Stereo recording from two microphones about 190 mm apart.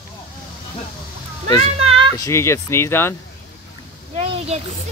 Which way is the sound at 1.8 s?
30° right (ahead or behind).